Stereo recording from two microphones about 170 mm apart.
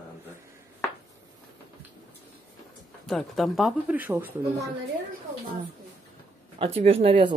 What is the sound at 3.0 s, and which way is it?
Speech, centre (ahead or behind).